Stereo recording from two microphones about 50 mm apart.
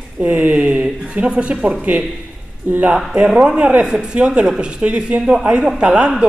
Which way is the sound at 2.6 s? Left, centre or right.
Right.